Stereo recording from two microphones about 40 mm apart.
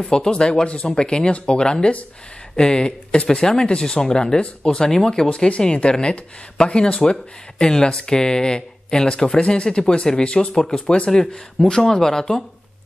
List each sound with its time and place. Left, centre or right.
0.0 s speech: left
5.3 s speech: left